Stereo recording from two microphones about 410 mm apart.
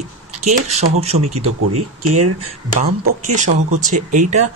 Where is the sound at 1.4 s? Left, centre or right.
Right.